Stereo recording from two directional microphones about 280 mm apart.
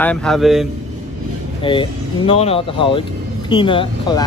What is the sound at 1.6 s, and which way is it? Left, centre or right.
Speech, centre.